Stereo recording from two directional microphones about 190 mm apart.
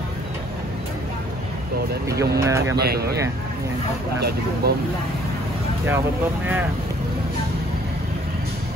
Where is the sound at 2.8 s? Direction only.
55° right (ahead or behind).